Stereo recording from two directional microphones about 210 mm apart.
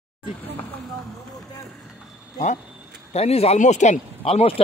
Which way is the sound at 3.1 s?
30° left (ahead or behind).